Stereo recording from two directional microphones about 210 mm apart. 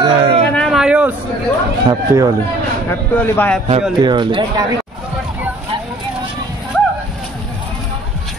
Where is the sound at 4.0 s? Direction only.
20° right (ahead or behind).